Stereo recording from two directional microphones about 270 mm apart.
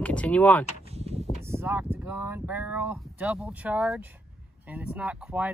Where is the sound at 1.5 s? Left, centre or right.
Centre.